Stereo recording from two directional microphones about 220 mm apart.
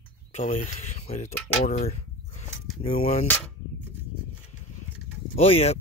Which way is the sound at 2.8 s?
30° left (ahead or behind).